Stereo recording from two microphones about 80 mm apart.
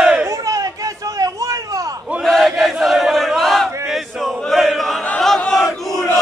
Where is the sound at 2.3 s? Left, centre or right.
Centre.